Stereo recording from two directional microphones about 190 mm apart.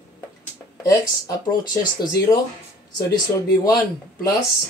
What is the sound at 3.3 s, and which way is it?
Speech, 15° left (ahead or behind).